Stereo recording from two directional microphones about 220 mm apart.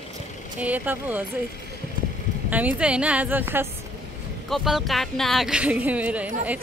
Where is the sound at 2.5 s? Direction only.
5° right (ahead or behind).